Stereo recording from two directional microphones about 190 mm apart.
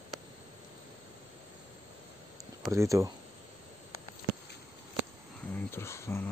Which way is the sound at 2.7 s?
15° right (ahead or behind).